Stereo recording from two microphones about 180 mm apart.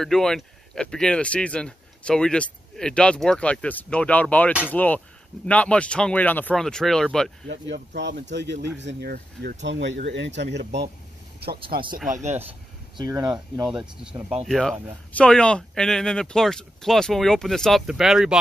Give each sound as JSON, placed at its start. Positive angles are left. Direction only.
{"t": 0.0, "sound": "speech", "side_deg": 0}
{"t": 7.6, "sound": "speech", "side_deg": -75}
{"t": 12.1, "sound": "speech", "side_deg": -40}
{"t": 12.9, "sound": "speech", "side_deg": -20}
{"t": 13.7, "sound": "speech", "side_deg": -5}